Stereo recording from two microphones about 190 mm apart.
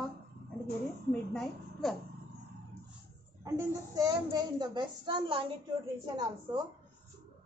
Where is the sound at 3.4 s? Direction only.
20° right (ahead or behind).